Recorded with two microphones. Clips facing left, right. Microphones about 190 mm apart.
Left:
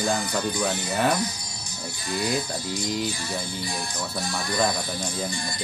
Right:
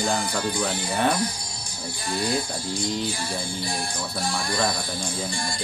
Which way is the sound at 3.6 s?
30° right (ahead or behind).